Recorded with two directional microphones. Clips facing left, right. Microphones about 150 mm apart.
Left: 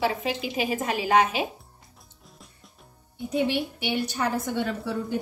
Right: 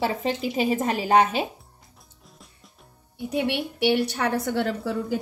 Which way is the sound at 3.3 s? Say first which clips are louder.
Even; 70° right (ahead or behind).